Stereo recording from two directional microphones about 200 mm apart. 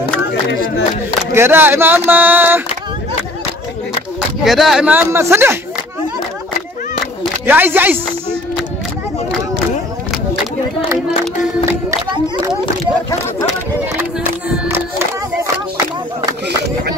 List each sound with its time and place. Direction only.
0.3 s a sound: 60° left (ahead or behind)
1.3 s speech: 10° right (ahead or behind)
4.4 s speech: centre (ahead or behind)
7.4 s speech: 10° right (ahead or behind)